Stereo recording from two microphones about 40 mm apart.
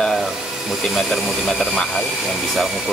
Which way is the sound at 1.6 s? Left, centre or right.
Centre.